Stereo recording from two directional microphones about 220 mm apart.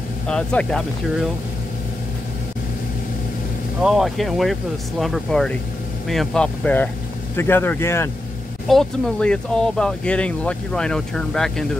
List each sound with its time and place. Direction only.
0.3 s speech: 5° left (ahead or behind)
3.8 s speech: centre (ahead or behind)